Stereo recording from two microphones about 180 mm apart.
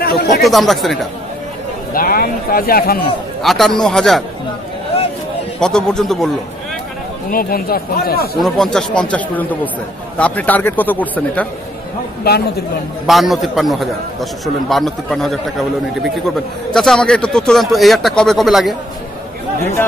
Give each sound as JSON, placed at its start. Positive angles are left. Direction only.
{"t": 0.0, "sound": "chatter", "side_deg": 60}
{"t": 0.3, "sound": "speech", "side_deg": 0}
{"t": 2.0, "sound": "speech", "side_deg": 55}
{"t": 3.4, "sound": "speech", "side_deg": 0}
{"t": 5.6, "sound": "speech", "side_deg": 5}
{"t": 7.2, "sound": "speech", "side_deg": 55}
{"t": 8.4, "sound": "a man's voice", "side_deg": 0}
{"t": 12.2, "sound": "speech", "side_deg": 60}
{"t": 13.0, "sound": "speech", "side_deg": 0}
{"t": 16.7, "sound": "speech", "side_deg": 5}